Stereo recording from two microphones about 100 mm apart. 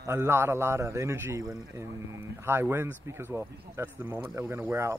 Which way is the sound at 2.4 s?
25° right (ahead or behind).